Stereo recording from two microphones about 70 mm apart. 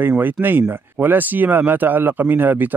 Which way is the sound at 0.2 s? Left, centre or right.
Right.